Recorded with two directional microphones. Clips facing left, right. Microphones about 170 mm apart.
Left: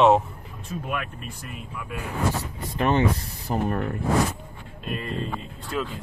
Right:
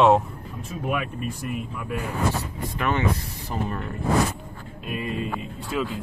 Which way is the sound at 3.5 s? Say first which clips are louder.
Left 4 dB; 50° left (ahead or behind).